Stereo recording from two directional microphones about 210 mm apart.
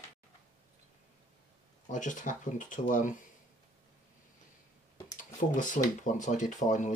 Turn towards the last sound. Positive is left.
turn(degrees=35)  # may be behind; listen again after turning